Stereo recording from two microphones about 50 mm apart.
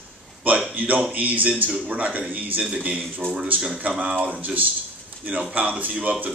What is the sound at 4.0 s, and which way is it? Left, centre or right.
A man's voice, right.